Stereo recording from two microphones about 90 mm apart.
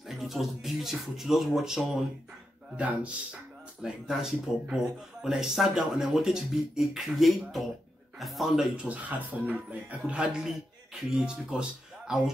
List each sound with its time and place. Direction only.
0.1 s speech: centre (ahead or behind)
3.8 s speech: 5° right (ahead or behind)